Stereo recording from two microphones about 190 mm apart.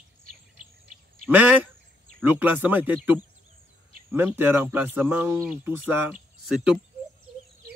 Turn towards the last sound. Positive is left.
turn(degrees=0)  # may be behind; listen again after turning